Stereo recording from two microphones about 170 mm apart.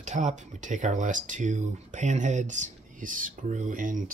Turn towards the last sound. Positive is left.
turn(degrees=-50)  # may be behind; listen again after turning